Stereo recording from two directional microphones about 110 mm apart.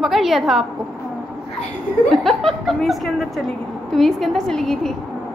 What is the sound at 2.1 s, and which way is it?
A woman's voice, centre (ahead or behind).